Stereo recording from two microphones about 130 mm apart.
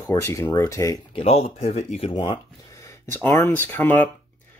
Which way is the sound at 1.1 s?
50° left (ahead or behind).